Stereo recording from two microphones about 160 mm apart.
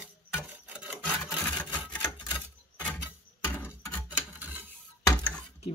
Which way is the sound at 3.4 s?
10° left (ahead or behind).